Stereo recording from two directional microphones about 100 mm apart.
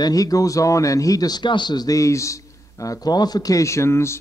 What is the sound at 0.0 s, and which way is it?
Speech, 35° left (ahead or behind).